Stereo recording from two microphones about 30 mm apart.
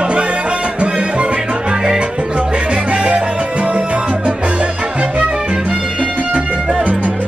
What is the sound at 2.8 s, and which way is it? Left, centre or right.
Salsa music, right.